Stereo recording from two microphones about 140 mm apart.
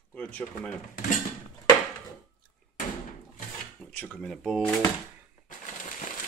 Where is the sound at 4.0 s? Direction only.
5° left (ahead or behind).